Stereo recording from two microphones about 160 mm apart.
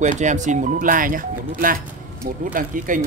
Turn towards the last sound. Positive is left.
turn(degrees=-55)  # may be behind; listen again after turning